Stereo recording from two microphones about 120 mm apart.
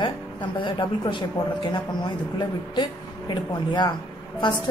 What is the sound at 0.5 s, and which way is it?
Speech, 45° left (ahead or behind).